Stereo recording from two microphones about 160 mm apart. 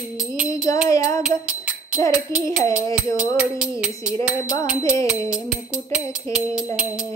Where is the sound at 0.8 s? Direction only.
20° left (ahead or behind).